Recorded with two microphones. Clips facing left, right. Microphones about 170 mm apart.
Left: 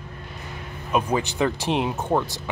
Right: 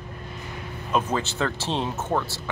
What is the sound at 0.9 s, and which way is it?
Speech, 15° left (ahead or behind).